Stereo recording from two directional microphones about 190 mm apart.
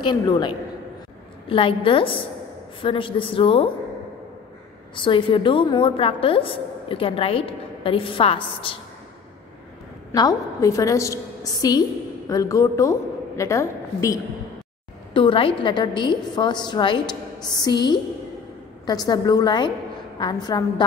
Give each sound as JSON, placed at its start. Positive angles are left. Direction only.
{"t": 0.0, "sound": "a woman's voice", "side_deg": 25}
{"t": 1.5, "sound": "a woman's voice", "side_deg": 25}
{"t": 4.9, "sound": "a woman's voice", "side_deg": 25}
{"t": 10.1, "sound": "a woman's voice", "side_deg": 20}
{"t": 15.1, "sound": "a woman's voice", "side_deg": 25}